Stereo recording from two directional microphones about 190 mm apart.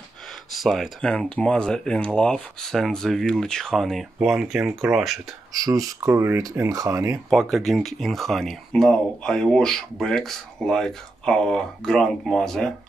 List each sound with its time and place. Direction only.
0.5 s speech: centre (ahead or behind)
5.5 s speech: 20° right (ahead or behind)
7.2 s speech: centre (ahead or behind)